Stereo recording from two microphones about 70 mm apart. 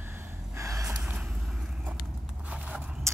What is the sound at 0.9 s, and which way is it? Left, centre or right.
Vehicle, centre.